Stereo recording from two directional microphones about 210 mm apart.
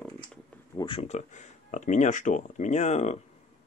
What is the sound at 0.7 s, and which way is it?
Speech, 25° left (ahead or behind).